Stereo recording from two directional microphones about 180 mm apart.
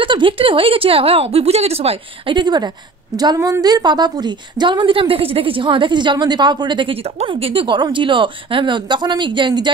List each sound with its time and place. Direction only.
0.0 s a woman's voice: 30° right (ahead or behind)